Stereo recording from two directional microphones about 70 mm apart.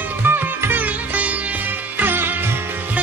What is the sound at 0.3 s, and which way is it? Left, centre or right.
Sitar, right.